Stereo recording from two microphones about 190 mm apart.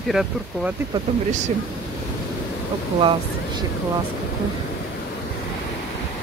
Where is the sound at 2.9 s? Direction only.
25° right (ahead or behind).